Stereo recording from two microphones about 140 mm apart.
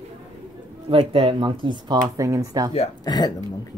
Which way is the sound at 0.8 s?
40° right (ahead or behind).